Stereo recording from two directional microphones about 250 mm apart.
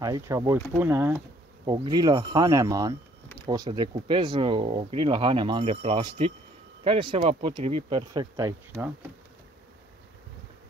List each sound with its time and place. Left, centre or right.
0.0 s speech: centre